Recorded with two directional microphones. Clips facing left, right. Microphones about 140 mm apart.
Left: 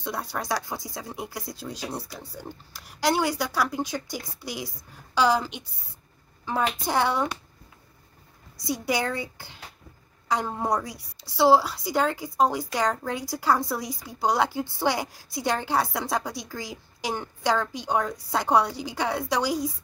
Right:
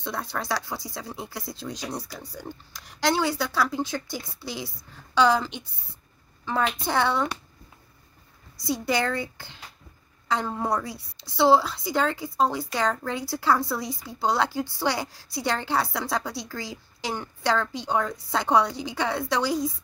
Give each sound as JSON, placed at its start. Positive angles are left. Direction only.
{"t": 0.0, "sound": "a woman's voice", "side_deg": 10}
{"t": 8.6, "sound": "a woman's voice", "side_deg": 15}